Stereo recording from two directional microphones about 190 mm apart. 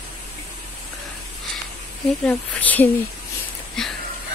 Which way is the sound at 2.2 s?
10° left (ahead or behind).